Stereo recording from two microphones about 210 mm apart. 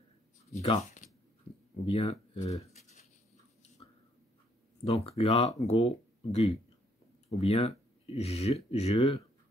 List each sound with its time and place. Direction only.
0.6 s speech: 30° left (ahead or behind)
2.6 s a sound: 35° left (ahead or behind)
4.8 s speech: 30° left (ahead or behind)